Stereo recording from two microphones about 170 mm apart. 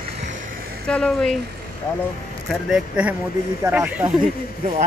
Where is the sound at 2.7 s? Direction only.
5° right (ahead or behind).